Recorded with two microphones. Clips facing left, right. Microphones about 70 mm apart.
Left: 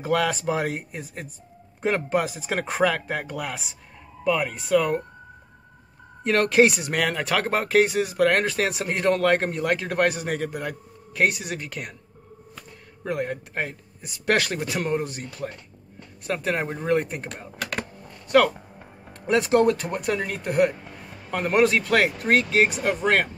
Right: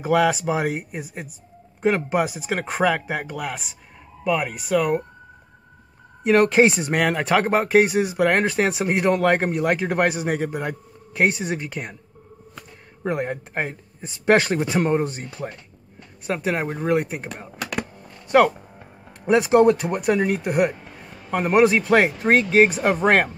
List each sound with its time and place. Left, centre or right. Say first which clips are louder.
0.0 s speech: right 4 dB; centre
6.2 s speech: right 3 dB; centre
13.0 s speech: right 3 dB; right
16.3 s speech: right 2 dB; centre
19.2 s speech: right 4 dB; centre
22.8 s speech: right 4 dB; right